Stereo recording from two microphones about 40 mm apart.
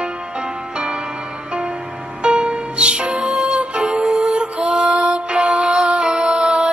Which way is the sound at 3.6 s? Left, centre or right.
Right.